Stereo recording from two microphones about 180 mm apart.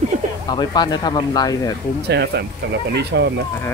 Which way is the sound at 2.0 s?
70° right (ahead or behind).